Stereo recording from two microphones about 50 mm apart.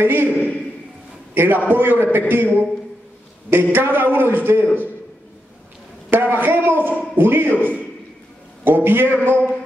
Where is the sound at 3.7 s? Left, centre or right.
Right.